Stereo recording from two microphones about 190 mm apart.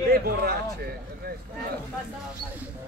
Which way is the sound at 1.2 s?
50° right (ahead or behind).